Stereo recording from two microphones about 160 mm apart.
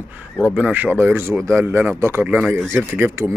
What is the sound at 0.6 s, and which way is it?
Speech, 10° right (ahead or behind).